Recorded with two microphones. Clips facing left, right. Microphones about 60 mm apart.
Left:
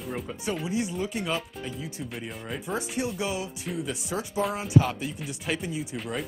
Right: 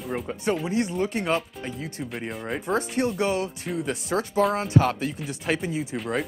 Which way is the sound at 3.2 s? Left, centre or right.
Right.